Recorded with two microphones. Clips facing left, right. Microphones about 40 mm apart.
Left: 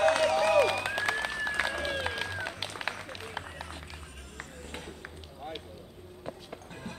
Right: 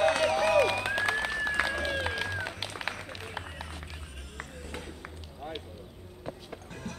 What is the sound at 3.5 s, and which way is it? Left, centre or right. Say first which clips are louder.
Run: even; centre.